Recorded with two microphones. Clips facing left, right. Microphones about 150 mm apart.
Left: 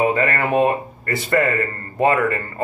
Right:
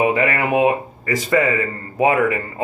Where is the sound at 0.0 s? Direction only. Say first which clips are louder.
Right 1 dB; 10° right (ahead or behind).